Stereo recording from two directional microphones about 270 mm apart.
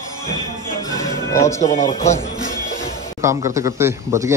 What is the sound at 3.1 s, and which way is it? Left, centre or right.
Speech, centre.